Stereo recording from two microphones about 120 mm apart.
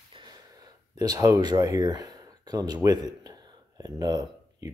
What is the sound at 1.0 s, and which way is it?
Speech, 30° right (ahead or behind).